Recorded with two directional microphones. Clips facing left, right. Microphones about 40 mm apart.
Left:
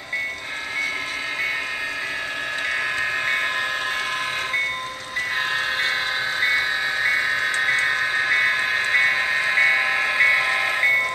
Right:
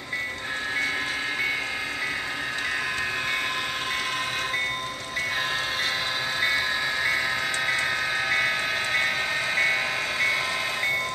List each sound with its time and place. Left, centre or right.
6.4 s train: centre